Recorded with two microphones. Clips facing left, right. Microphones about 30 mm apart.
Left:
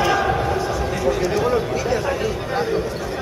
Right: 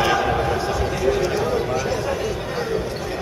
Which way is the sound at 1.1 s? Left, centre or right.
Right.